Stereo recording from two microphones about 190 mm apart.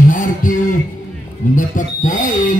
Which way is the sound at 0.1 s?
45° left (ahead or behind).